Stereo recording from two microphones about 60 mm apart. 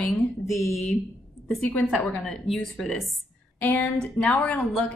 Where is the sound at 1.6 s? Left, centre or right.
Left.